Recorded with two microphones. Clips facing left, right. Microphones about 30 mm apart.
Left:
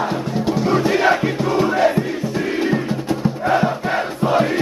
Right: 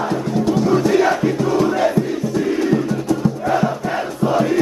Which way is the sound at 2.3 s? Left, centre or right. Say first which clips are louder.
Right 3 dB; left.